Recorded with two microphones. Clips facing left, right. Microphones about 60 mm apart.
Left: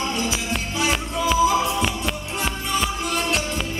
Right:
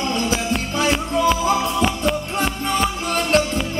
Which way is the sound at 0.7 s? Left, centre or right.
Right.